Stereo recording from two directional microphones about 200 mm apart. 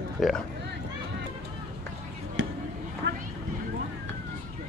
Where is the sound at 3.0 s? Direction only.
55° right (ahead or behind).